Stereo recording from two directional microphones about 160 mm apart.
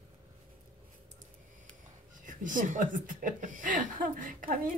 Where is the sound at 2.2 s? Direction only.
55° right (ahead or behind).